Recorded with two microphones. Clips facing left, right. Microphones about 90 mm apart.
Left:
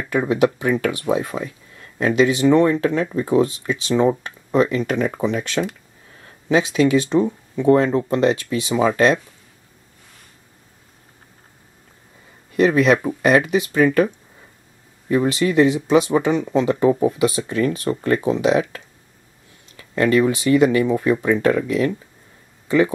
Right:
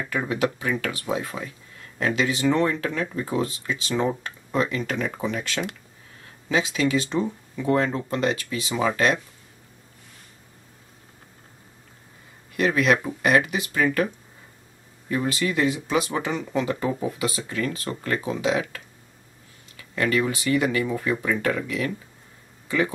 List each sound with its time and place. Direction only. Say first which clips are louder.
0.1 s speech: left 8 dB; 25° left (ahead or behind)
12.5 s speech: left 6 dB; 25° left (ahead or behind)
15.0 s speech: left 7 dB; 25° left (ahead or behind)
19.8 s speech: left 7 dB; 30° left (ahead or behind)